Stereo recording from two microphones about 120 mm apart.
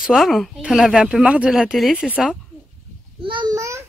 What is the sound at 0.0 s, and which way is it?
Speech, centre (ahead or behind).